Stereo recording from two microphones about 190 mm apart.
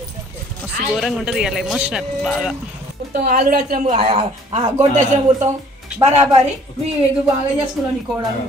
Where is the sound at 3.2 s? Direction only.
55° right (ahead or behind).